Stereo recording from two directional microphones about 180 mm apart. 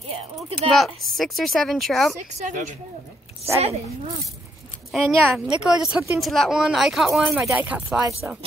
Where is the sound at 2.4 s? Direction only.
40° right (ahead or behind).